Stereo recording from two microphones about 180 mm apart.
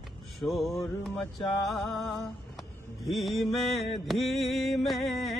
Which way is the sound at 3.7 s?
35° left (ahead or behind).